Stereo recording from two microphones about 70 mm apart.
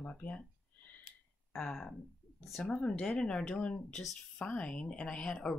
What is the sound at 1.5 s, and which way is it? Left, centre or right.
Speech, centre.